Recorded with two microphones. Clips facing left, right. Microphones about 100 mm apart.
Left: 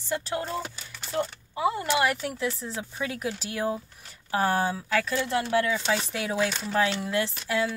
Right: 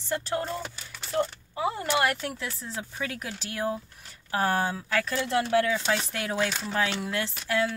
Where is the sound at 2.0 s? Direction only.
5° left (ahead or behind).